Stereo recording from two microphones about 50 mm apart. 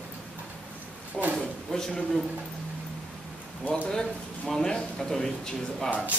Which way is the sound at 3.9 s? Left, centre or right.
Centre.